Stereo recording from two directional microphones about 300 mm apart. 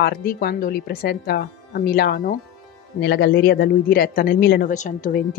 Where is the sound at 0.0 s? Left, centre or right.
Left.